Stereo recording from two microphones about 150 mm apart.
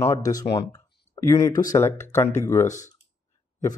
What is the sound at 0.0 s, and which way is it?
Speech, 20° left (ahead or behind).